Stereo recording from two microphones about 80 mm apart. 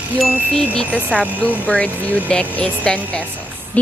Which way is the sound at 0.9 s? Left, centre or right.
Centre.